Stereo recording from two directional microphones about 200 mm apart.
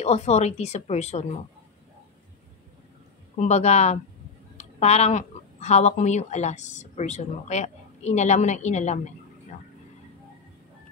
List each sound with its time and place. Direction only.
0.0 s a woman's voice: 30° left (ahead or behind)
3.3 s a woman's voice: 35° left (ahead or behind)